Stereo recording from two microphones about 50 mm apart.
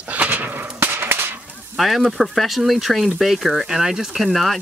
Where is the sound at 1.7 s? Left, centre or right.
Centre.